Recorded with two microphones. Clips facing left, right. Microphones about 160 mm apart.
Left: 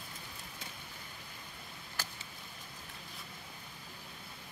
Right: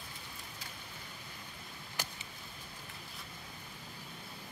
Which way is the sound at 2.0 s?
15° right (ahead or behind).